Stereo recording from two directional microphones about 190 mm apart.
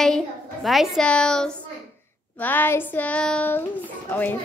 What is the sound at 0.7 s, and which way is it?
Speech, centre (ahead or behind).